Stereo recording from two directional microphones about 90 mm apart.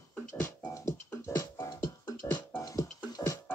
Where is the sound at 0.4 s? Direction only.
30° left (ahead or behind).